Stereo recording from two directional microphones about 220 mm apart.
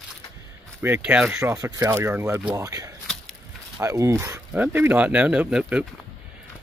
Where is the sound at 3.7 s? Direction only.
15° right (ahead or behind).